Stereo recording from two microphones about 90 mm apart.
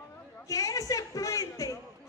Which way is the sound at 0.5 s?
40° left (ahead or behind).